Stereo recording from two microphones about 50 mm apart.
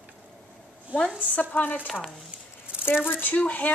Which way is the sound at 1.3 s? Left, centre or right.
Left.